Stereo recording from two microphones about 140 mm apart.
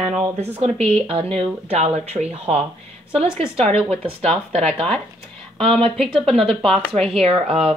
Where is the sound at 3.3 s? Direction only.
45° right (ahead or behind).